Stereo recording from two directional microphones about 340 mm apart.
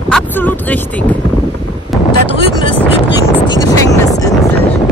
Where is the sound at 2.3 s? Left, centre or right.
Centre.